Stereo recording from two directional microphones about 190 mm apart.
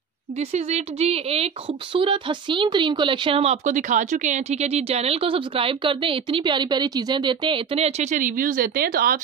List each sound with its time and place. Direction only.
0.4 s speech: 35° right (ahead or behind); by 9.2 s 50° right (ahead or behind)